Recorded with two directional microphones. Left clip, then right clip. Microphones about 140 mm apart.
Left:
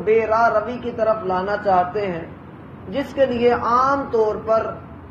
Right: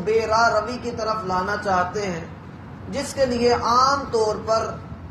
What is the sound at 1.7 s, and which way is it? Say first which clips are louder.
Speech: left 6 dB; centre (ahead or behind).